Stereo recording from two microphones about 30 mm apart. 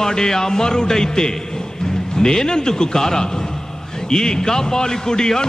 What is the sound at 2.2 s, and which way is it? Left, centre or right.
A man's voice, left.